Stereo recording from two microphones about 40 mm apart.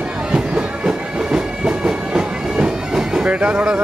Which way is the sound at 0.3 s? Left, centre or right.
Right.